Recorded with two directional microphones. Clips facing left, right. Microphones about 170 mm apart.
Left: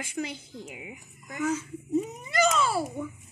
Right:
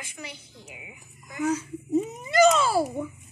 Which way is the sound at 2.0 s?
25° right (ahead or behind).